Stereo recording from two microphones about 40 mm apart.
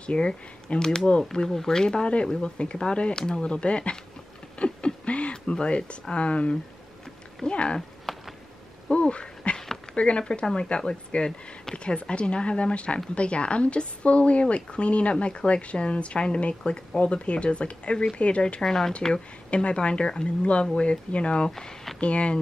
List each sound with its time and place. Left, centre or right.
0.0 s speech: left
4.6 s a sound: left
6.1 s speech: left
8.1 s a sound: centre
8.9 s dog: left
9.9 s speech: left
18.6 s speech: centre
19.5 s speech: left
21.5 s speech: centre
22.0 s speech: left